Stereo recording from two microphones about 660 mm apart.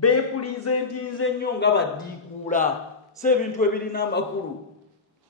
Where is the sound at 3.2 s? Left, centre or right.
Centre.